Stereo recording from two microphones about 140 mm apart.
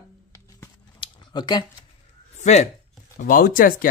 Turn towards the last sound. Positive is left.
turn(degrees=90)